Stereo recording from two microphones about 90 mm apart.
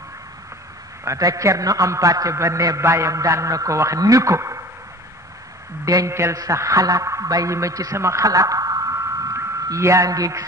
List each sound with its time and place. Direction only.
1.0 s a man's voice: 35° right (ahead or behind)
5.9 s a man's voice: 35° right (ahead or behind)